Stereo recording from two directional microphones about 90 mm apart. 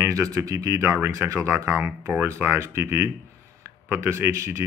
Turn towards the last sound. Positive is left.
turn(degrees=-30)  # may be behind; listen again after turning